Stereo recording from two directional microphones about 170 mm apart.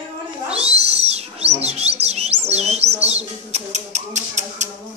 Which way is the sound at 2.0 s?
40° right (ahead or behind).